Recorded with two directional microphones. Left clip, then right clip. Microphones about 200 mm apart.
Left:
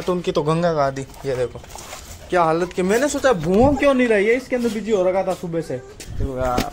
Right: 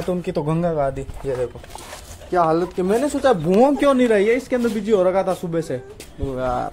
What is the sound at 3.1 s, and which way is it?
Speech, 20° right (ahead or behind).